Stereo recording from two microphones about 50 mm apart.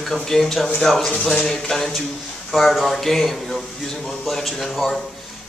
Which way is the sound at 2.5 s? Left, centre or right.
Centre.